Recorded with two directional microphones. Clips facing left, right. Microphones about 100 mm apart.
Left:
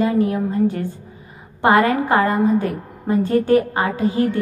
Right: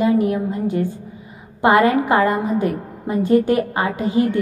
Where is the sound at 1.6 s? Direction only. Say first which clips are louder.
Right 1 dB; 20° right (ahead or behind).